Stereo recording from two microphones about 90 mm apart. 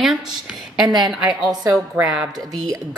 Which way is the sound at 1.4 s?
50° right (ahead or behind).